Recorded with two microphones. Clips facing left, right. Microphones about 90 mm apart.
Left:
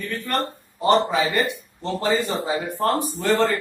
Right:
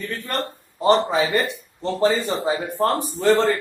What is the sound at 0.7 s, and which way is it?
A man's voice, 35° right (ahead or behind).